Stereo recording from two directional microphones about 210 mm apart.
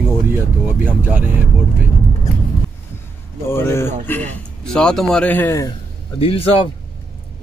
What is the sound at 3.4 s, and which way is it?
A man's voice, 10° left (ahead or behind).